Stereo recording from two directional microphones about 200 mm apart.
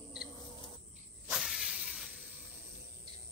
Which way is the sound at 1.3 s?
Centre (ahead or behind).